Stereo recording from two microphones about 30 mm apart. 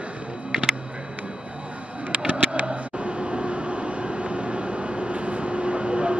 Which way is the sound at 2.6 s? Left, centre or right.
Right.